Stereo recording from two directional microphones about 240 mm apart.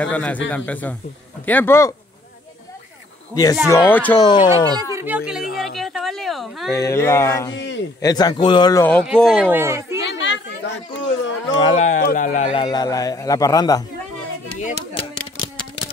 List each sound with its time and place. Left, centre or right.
0.0 s a man's voice: centre
3.6 s a man's voice: centre
4.9 s speech: centre
6.7 s a man's voice: centre
7.5 s a man's voice: left
8.0 s a man's voice: centre
9.5 s speech: centre
10.0 s chatter: left
11.6 s speech: left
12.6 s a man's voice: centre